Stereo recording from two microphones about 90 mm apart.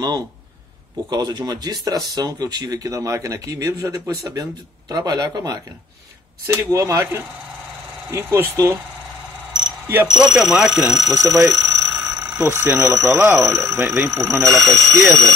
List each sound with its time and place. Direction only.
1.1 s speech: 50° right (ahead or behind)
4.4 s speech: 50° right (ahead or behind)
6.4 s speech: 35° right (ahead or behind)
10.0 s speech: 5° right (ahead or behind)
11.1 s speech: 40° right (ahead or behind)
11.6 s alarm: 40° right (ahead or behind)
12.0 s speech: 40° right (ahead or behind)